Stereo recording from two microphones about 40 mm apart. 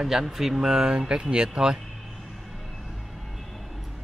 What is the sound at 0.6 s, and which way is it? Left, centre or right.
Speech, centre.